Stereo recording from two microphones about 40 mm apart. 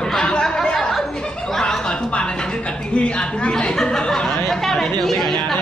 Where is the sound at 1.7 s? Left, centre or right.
Centre.